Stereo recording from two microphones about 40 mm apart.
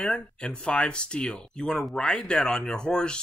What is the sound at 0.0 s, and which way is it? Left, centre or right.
Speech, left.